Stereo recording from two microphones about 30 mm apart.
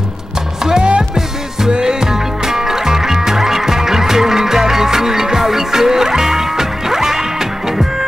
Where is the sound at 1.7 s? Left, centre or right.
Right.